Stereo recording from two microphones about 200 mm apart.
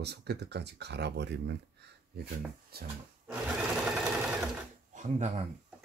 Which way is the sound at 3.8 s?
5° right (ahead or behind).